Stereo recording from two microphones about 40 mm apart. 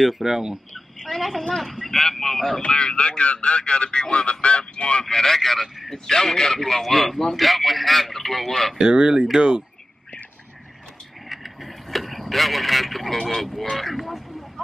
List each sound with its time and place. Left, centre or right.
0.0 s speech: centre
1.0 s a man's voice: centre
2.6 s speech: left
5.0 s a man's voice: centre
8.7 s speech: right
11.2 s vehicle: centre